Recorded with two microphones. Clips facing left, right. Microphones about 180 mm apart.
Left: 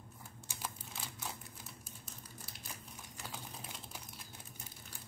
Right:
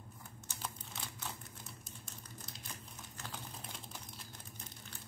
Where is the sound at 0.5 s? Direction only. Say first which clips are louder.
Even; 5° left (ahead or behind).